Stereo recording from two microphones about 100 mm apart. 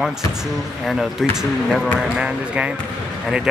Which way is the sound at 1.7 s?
10° right (ahead or behind).